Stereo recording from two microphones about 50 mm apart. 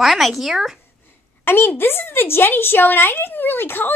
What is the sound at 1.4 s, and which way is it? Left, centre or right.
A woman's voice, left.